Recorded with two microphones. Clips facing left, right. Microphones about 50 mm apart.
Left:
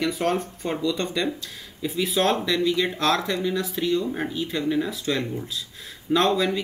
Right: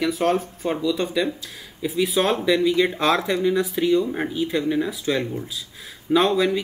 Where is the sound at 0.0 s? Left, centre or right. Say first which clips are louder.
Right 3 dB; centre.